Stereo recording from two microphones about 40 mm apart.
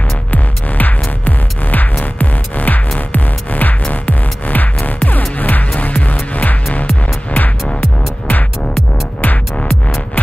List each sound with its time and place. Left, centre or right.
0.3 s music: left